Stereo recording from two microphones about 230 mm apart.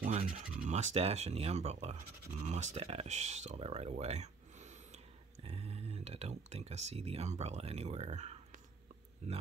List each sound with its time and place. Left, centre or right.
0.0 s speech: right